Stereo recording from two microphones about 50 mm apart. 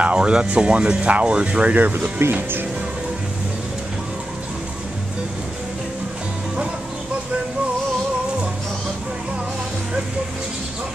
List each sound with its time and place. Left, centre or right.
0.0 s speech: centre
2.2 s speech: right